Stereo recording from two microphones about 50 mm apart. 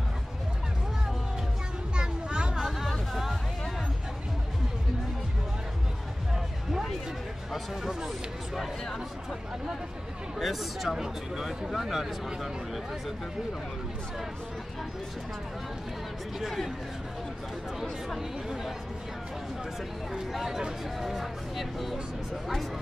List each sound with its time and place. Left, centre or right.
2.0 s children playing: centre
2.9 s music: centre
6.7 s a sound: centre
7.5 s speech: centre
10.4 s speech: centre
16.3 s speech: centre
18.1 s speech: centre
20.1 s speech: centre